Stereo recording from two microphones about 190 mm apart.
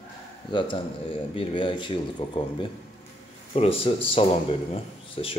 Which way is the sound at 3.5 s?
30° left (ahead or behind).